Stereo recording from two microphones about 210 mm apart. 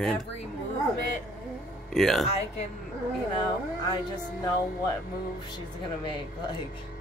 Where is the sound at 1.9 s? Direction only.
Centre (ahead or behind).